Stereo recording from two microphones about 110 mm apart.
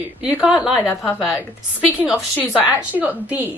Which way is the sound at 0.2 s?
10° right (ahead or behind).